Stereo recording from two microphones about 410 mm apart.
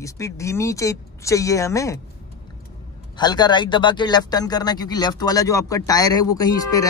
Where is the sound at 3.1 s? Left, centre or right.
Centre.